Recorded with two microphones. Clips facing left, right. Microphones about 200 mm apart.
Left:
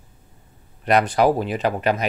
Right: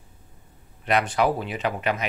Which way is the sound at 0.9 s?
40° left (ahead or behind).